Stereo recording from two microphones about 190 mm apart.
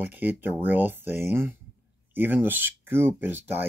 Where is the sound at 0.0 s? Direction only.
10° right (ahead or behind).